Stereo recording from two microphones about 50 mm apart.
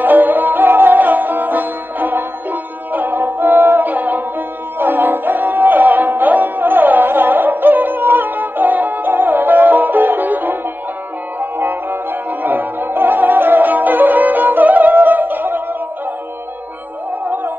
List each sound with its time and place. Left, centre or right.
0.0 s music: right
17.2 s music: right